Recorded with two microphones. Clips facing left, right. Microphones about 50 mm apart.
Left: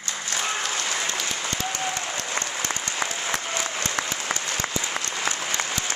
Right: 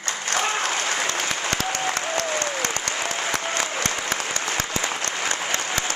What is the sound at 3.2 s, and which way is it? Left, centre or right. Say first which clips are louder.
Applause: right 3 dB; right.